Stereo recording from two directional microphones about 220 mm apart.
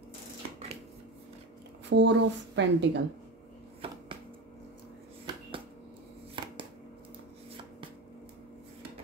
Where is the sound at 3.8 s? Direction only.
25° right (ahead or behind).